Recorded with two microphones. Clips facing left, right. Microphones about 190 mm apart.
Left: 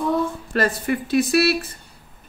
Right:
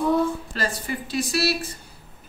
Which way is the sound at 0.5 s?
60° left (ahead or behind).